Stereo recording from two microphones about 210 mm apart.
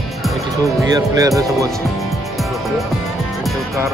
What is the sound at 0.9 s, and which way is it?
Speech, 15° right (ahead or behind).